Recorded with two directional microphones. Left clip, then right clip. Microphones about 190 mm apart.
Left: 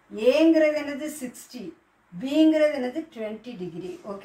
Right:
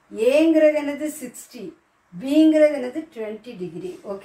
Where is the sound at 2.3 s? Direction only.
15° right (ahead or behind).